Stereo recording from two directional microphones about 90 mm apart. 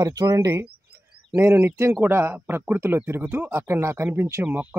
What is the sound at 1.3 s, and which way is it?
Speech, 25° right (ahead or behind).